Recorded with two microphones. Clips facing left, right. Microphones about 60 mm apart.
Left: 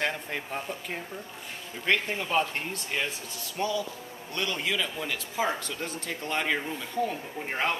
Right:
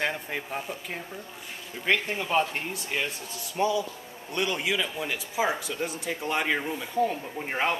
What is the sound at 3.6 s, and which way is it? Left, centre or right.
Speech, centre.